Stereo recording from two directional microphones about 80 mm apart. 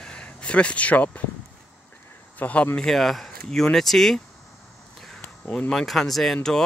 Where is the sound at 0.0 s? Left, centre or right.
Centre.